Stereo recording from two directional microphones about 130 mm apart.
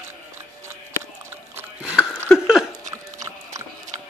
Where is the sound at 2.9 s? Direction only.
25° right (ahead or behind).